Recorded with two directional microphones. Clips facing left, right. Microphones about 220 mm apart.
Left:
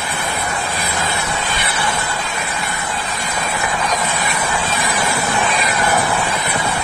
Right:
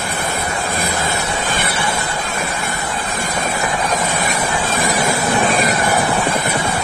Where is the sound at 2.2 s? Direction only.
45° right (ahead or behind).